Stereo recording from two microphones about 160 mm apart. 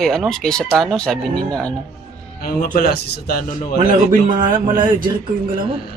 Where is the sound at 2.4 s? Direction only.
70° left (ahead or behind).